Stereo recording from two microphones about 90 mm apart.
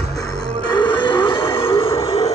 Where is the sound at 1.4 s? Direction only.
30° left (ahead or behind).